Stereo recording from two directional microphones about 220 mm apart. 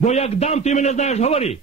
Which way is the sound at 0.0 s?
30° left (ahead or behind).